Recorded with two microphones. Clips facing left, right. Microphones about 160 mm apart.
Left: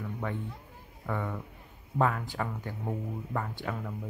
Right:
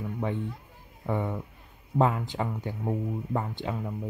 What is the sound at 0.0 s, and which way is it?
Children playing, 20° right (ahead or behind).